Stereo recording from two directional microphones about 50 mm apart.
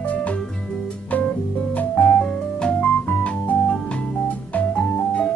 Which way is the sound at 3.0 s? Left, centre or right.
Left.